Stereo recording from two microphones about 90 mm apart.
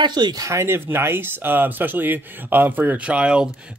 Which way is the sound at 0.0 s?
55° right (ahead or behind).